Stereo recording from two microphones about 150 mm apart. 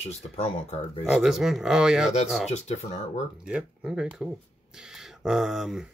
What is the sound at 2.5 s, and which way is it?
Speech, 45° left (ahead or behind).